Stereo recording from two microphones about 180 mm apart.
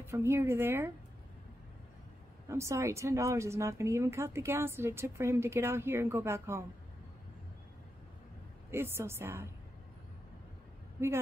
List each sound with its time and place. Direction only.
0.0 s a woman's voice: 15° right (ahead or behind)
2.4 s a woman's voice: 15° right (ahead or behind)
8.6 s a woman's voice: 15° right (ahead or behind)